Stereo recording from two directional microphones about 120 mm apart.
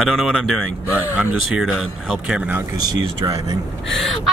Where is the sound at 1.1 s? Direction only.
15° right (ahead or behind).